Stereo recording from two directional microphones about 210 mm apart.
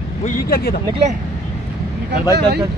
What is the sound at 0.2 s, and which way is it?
Speech, 45° left (ahead or behind).